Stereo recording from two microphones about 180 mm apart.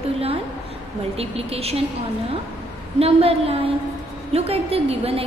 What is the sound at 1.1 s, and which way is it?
Speech, 35° right (ahead or behind).